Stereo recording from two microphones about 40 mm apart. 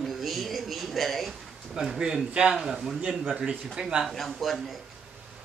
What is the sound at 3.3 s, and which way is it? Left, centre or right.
Speech, centre.